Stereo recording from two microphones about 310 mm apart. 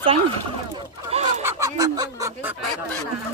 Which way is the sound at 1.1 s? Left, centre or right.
Right.